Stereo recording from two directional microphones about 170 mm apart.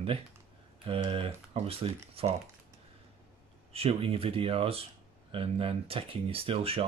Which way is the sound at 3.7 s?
35° right (ahead or behind).